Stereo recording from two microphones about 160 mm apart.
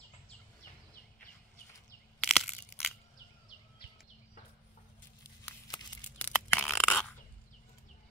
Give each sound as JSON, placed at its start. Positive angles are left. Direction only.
{"t": 2.1, "sound": "crushing", "side_deg": 0}
{"t": 6.1, "sound": "crunch", "side_deg": 5}